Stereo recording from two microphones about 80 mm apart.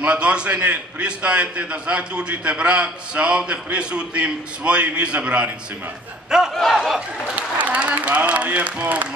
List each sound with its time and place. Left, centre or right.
0.0 s a man's voice: centre
6.5 s speech: centre
7.3 s speech: centre